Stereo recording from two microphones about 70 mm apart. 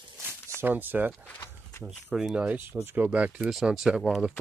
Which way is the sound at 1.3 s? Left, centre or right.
Left.